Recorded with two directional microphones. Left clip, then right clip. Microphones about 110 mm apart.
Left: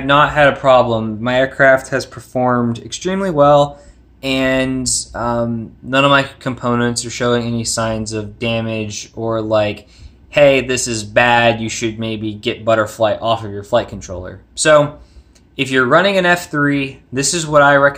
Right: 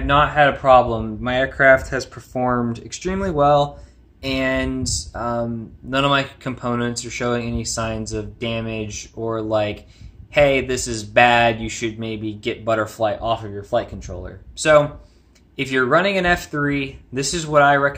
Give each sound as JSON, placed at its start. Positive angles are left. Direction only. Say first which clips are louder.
{"t": 0.0, "sound": "speech", "louder": "left 4 dB", "side_deg": 25}